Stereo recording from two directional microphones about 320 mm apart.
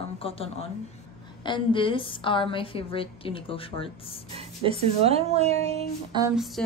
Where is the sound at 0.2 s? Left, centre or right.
Centre.